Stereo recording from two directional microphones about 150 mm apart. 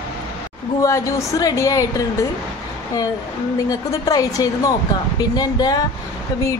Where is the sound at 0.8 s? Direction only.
20° left (ahead or behind).